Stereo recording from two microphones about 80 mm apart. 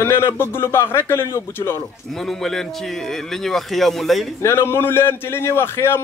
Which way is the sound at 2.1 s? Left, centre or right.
Centre.